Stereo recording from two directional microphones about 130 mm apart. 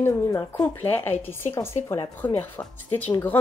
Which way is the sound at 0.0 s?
20° left (ahead or behind).